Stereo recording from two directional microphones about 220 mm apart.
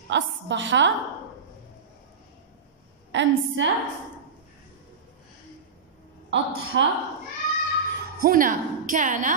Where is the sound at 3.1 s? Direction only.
55° right (ahead or behind).